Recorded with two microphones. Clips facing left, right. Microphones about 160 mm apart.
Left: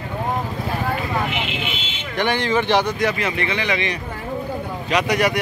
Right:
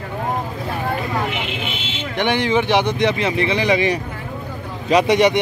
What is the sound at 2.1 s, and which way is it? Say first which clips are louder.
Speech: right 2 dB; 15° right (ahead or behind).